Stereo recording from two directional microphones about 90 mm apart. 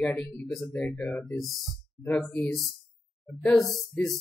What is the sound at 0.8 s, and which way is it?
Speech, 10° left (ahead or behind).